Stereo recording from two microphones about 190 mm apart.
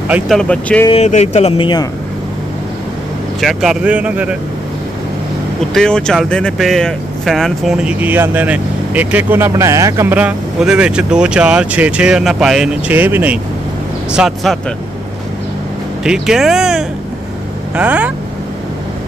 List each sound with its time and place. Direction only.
0.1 s speech: centre (ahead or behind)
0.8 s speech: 35° left (ahead or behind)
3.3 s speech: centre (ahead or behind)
5.8 s speech: 5° left (ahead or behind)
16.0 s speech: 5° right (ahead or behind)